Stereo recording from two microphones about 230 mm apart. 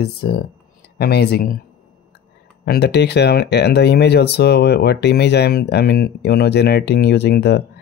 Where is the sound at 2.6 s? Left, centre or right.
Left.